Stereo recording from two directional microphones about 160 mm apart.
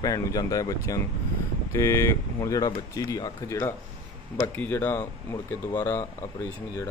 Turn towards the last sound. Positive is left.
turn(degrees=20)  # may be behind; listen again after turning